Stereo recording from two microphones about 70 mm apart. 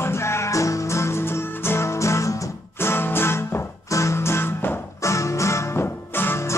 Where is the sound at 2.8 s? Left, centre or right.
Left.